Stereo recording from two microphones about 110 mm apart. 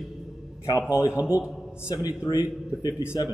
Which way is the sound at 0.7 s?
40° left (ahead or behind).